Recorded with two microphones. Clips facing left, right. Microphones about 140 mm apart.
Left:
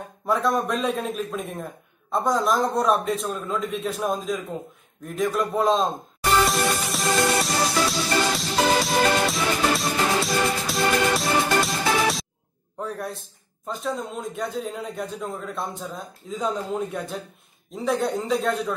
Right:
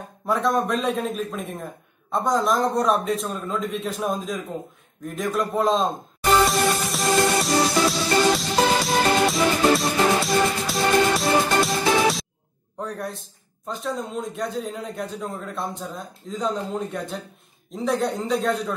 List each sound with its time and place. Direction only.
0.3 s a man's voice: centre (ahead or behind)
6.4 s music: centre (ahead or behind)
12.7 s a man's voice: centre (ahead or behind)